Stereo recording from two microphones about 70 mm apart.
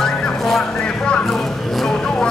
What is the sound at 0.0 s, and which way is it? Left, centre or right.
Vehicle, centre.